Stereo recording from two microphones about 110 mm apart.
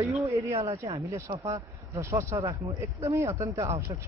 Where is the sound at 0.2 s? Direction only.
30° right (ahead or behind).